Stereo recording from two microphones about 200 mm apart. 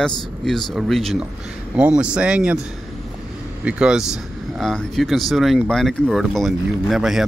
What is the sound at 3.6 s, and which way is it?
Speech, 5° right (ahead or behind).